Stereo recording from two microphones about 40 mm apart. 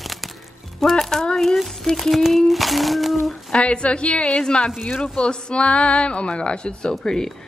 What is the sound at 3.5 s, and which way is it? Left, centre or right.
Speech, left.